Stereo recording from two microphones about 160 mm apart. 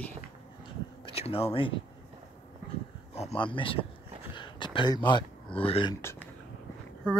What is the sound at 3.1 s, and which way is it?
Speech, 35° left (ahead or behind).